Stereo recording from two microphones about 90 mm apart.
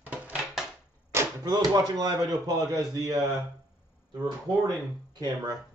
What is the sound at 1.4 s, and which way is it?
Speech, 45° right (ahead or behind).